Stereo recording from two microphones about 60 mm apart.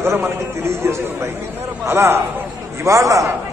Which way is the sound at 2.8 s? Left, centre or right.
Right.